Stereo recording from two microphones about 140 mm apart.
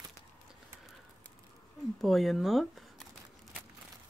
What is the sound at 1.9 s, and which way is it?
Speech, centre (ahead or behind).